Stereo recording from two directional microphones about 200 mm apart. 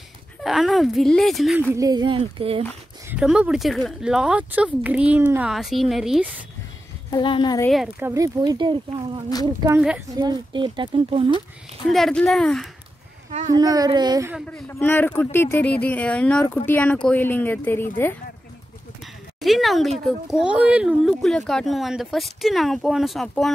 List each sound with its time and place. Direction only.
0.4 s speech: centre (ahead or behind)
1.7 s speech: 15° right (ahead or behind)
3.1 s speech: 5° right (ahead or behind)
7.1 s speech: 25° left (ahead or behind)
7.7 s speech: 5° right (ahead or behind)
8.1 s speech: 20° right (ahead or behind)
9.8 s speech: 5° right (ahead or behind)
10.1 s speech: 20° right (ahead or behind)
11.9 s speech: 5° left (ahead or behind)
13.5 s speech: 20° right (ahead or behind)
14.5 s speech: 10° left (ahead or behind)
19.4 s speech: centre (ahead or behind)